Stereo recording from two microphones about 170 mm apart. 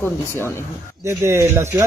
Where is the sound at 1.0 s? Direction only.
15° right (ahead or behind).